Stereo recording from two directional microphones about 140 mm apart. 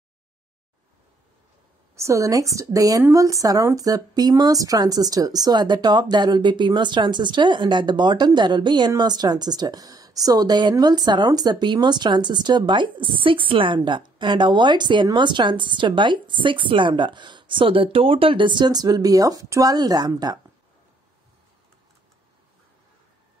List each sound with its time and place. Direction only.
2.0 s a woman's voice: 20° right (ahead or behind)